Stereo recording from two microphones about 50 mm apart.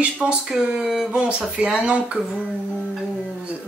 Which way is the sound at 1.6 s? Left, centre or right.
Centre.